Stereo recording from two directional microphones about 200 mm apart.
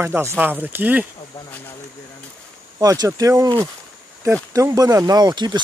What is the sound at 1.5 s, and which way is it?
Speech, 10° left (ahead or behind).